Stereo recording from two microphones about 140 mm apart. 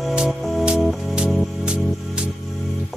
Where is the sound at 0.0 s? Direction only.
5° right (ahead or behind).